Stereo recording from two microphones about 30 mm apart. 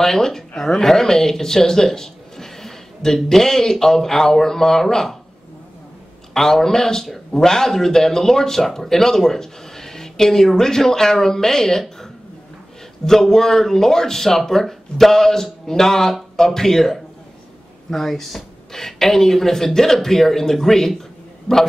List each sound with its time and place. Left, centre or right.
0.0 s speech: centre
6.3 s speech: centre
13.0 s speech: centre
21.5 s speech: left